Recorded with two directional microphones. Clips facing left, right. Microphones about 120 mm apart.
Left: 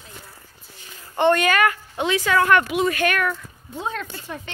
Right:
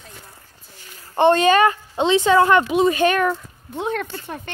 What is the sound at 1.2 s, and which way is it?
Speech, 25° right (ahead or behind).